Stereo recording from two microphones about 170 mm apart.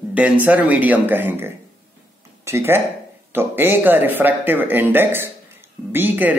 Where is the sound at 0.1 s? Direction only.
10° right (ahead or behind).